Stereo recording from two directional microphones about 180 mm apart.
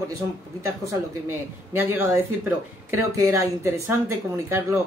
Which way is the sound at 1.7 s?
10° right (ahead or behind).